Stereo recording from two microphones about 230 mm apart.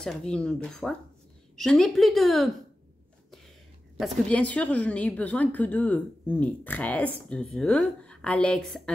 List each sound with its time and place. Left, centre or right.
0.0 s speech: centre
4.0 s a woman's voice: centre